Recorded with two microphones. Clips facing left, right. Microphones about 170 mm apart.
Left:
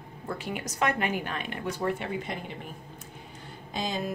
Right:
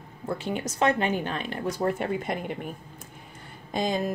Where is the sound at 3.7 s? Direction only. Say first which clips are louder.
Right 5 dB; 50° right (ahead or behind).